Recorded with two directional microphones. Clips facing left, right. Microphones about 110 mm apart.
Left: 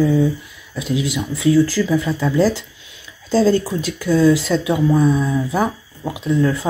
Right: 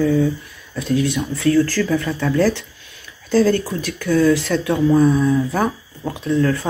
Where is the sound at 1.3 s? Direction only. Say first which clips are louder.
Left 2 dB; 10° left (ahead or behind).